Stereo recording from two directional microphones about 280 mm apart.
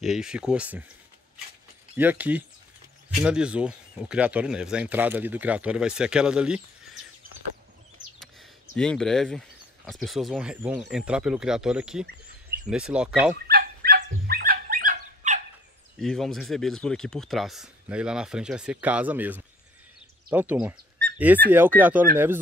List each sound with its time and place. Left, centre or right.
0.0 s speech: centre
2.0 s speech: centre
8.2 s a sound: centre
9.8 s speech: centre
13.3 s dog: right
16.0 s speech: centre